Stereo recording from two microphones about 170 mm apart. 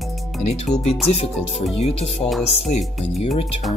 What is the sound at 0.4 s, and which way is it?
Speech, 40° left (ahead or behind).